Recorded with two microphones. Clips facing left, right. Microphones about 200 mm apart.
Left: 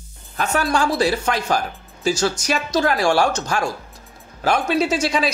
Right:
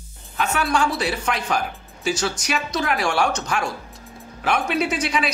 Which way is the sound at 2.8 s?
35° left (ahead or behind).